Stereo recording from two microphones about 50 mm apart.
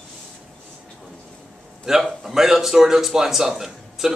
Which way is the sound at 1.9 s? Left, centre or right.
Centre.